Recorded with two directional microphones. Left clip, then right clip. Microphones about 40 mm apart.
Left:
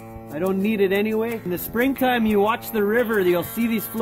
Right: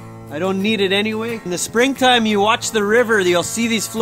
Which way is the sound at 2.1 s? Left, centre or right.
Right.